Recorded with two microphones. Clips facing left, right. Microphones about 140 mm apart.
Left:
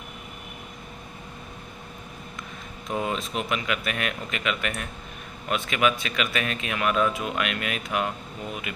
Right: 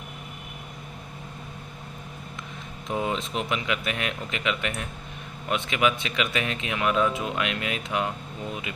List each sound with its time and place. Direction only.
2.9 s speech: 20° right (ahead or behind)